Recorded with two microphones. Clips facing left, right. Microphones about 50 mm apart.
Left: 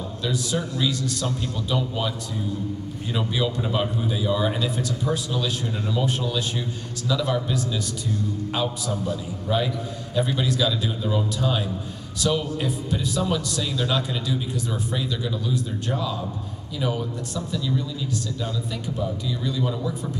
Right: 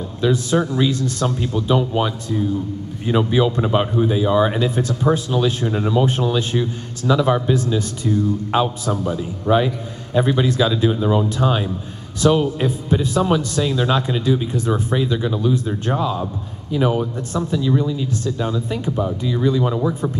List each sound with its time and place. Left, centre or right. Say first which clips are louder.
0.2 s speech: right 9 dB; right
3.1 s a man's voice: right 9 dB; right